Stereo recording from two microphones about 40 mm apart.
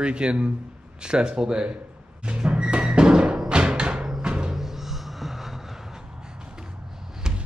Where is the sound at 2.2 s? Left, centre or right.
Right.